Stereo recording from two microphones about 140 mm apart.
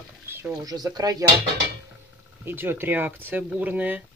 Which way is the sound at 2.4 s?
15° right (ahead or behind).